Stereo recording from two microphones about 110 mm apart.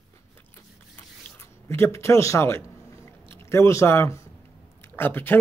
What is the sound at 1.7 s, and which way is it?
Speech, 25° left (ahead or behind).